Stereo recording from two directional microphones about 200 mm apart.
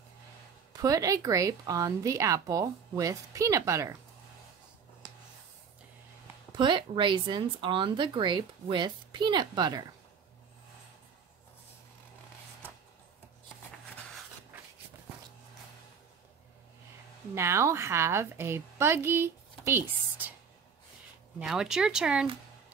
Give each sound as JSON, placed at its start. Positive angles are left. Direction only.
{"t": 0.7, "sound": "a woman's voice", "side_deg": -20}
{"t": 6.5, "sound": "speech", "side_deg": -25}
{"t": 17.4, "sound": "a woman's voice", "side_deg": -15}
{"t": 21.4, "sound": "speech", "side_deg": -5}